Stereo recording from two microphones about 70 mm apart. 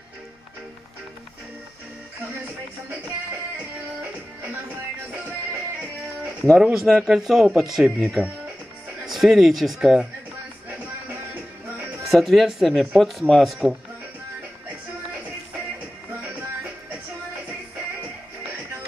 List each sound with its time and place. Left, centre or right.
6.5 s speech: centre
12.0 s speech: centre